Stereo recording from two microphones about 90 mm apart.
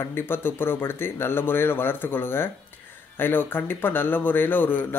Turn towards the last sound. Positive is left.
turn(degrees=20)  # may be behind; listen again after turning